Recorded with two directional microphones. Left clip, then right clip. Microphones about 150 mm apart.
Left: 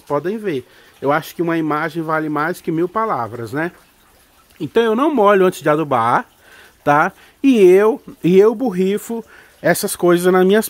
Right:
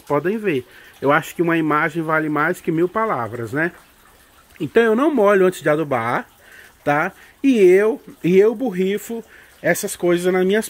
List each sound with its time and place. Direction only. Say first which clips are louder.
0.1 s speech: even; 5° right (ahead or behind); by 8.7 s 30° left (ahead or behind)
8.8 s speech: left 3 dB; 45° left (ahead or behind)